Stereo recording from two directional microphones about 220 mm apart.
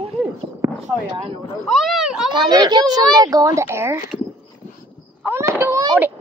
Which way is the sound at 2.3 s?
20° right (ahead or behind).